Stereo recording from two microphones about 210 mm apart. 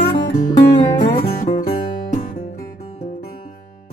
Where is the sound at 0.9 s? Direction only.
20° left (ahead or behind).